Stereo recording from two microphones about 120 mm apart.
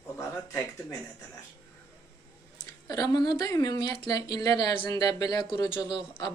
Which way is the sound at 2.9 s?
30° left (ahead or behind).